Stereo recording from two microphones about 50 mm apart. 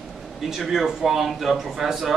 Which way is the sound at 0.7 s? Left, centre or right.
Centre.